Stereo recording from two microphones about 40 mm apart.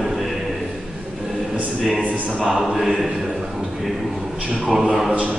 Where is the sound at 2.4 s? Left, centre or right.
Centre.